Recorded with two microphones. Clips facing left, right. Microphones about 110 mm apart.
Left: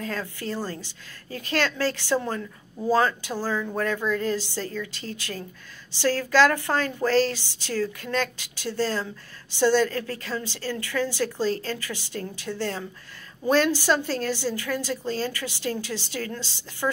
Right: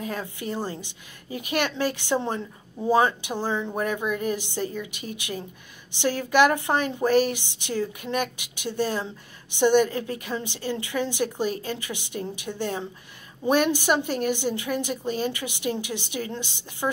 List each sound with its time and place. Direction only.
0.0 s a woman's voice: 15° right (ahead or behind)